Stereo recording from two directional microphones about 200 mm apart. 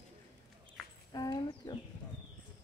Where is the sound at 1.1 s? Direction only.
20° left (ahead or behind).